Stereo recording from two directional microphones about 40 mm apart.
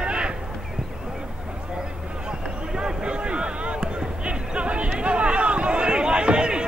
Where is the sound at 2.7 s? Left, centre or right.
Right.